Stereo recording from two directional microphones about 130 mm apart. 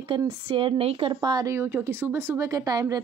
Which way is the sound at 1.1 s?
30° right (ahead or behind).